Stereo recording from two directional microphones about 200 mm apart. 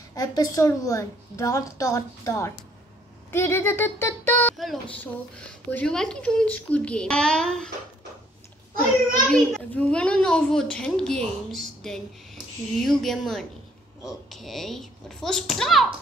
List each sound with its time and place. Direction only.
0.1 s a woman's voice: 20° left (ahead or behind)
9.3 s a child's voice: 5° left (ahead or behind)